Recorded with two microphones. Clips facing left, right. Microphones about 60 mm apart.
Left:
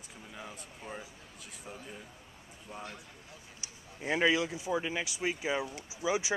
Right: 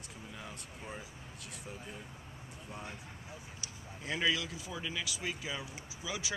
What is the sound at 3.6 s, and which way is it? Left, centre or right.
Speech, left.